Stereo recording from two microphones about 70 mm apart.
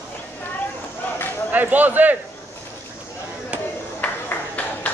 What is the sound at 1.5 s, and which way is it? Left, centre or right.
Speech, right.